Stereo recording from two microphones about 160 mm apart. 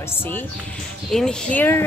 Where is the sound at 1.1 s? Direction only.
5° left (ahead or behind).